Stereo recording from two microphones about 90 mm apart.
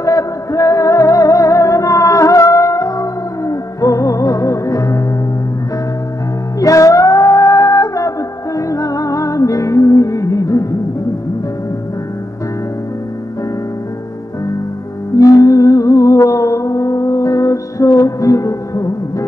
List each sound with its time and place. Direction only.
0.0 s music: 35° left (ahead or behind)
6.6 s music: 35° left (ahead or behind)
15.1 s music: 35° left (ahead or behind)